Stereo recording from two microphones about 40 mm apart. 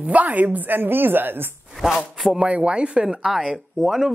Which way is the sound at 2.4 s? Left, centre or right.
Right.